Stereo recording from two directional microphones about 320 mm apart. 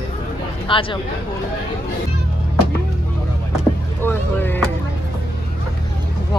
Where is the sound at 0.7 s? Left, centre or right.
Centre.